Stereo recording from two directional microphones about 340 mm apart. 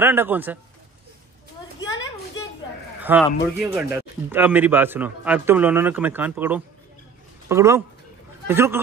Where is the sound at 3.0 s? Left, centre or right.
Centre.